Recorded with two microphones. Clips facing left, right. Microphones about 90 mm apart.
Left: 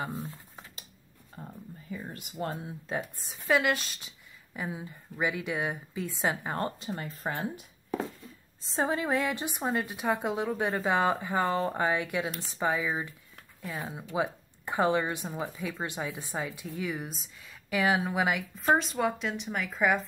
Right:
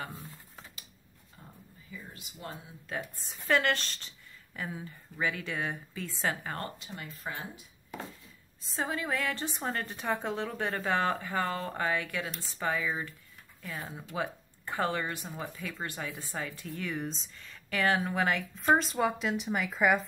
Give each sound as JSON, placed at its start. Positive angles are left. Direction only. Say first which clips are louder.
{"t": 0.1, "sound": "speech", "louder": "left 8 dB", "side_deg": 25}
{"t": 1.3, "sound": "speech", "louder": "left 9 dB", "side_deg": 45}
{"t": 2.9, "sound": "speech", "louder": "left 3 dB", "side_deg": 20}
{"t": 3.3, "sound": "speech", "louder": "left 1 dB", "side_deg": 5}
{"t": 6.8, "sound": "speech", "louder": "left 6 dB", "side_deg": 35}
{"t": 8.6, "sound": "speech", "louder": "left 5 dB", "side_deg": 25}
{"t": 18.8, "sound": "speech", "louder": "even", "side_deg": 0}